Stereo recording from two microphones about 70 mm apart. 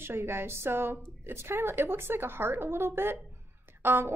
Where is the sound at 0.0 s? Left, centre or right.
Right.